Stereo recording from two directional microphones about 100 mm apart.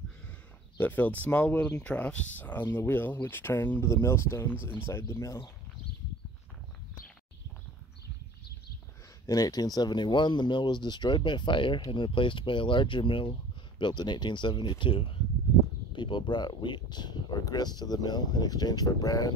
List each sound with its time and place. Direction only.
0.7 s speech: 20° left (ahead or behind)
9.2 s speech: 35° left (ahead or behind)